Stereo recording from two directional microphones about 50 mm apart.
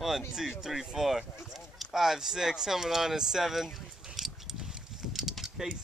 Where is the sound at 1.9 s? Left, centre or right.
Centre.